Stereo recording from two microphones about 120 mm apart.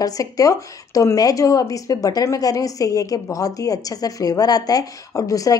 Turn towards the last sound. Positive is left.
turn(degrees=30)  # may be behind; listen again after turning